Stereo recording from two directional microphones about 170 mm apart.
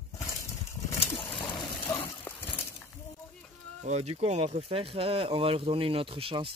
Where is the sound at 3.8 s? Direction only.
40° right (ahead or behind).